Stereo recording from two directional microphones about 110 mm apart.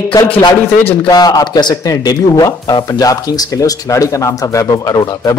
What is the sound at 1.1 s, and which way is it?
Speech, 35° left (ahead or behind).